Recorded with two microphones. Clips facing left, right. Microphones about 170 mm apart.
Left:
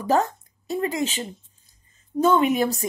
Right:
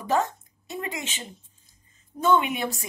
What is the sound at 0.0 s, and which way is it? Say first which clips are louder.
Speech: left 3 dB; 40° left (ahead or behind).